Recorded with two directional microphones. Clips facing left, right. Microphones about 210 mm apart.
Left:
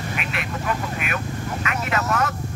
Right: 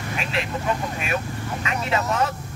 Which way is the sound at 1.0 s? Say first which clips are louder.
Right 1 dB; 30° right (ahead or behind).